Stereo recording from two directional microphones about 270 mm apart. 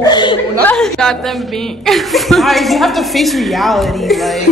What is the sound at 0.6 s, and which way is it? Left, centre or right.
A woman's voice, centre.